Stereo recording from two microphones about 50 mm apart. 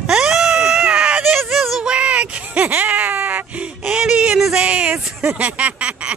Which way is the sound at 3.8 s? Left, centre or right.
Centre.